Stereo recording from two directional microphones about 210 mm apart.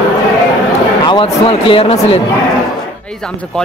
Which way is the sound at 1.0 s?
25° left (ahead or behind).